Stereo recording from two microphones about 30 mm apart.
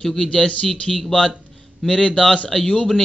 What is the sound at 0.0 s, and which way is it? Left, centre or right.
Speech, centre.